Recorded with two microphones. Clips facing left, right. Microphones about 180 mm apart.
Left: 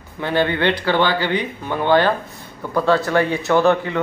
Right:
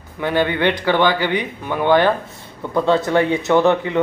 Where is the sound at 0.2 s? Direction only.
15° right (ahead or behind).